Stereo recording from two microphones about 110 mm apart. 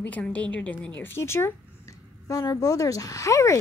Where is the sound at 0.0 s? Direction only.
15° left (ahead or behind).